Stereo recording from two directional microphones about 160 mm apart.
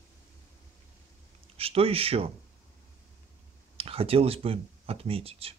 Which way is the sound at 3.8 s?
35° right (ahead or behind).